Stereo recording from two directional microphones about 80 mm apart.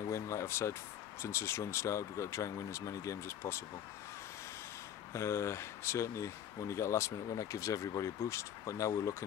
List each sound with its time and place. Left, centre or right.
0.1 s speech: left
5.1 s speech: left